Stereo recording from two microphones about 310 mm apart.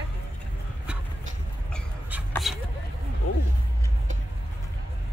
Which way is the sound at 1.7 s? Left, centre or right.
Centre.